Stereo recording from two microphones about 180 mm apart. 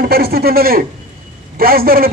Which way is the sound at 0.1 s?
60° right (ahead or behind).